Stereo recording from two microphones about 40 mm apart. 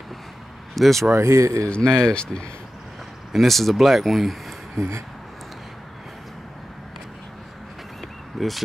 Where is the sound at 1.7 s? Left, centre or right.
Centre.